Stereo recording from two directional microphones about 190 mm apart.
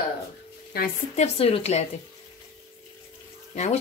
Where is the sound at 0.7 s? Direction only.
55° left (ahead or behind).